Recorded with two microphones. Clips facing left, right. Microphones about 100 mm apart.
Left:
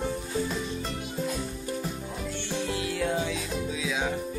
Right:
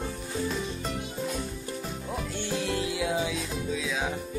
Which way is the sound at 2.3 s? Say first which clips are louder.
Right 1 dB; 5° right (ahead or behind).